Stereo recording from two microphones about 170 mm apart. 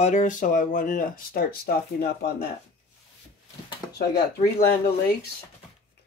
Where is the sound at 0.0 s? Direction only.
45° left (ahead or behind); by 2.4 s 65° left (ahead or behind).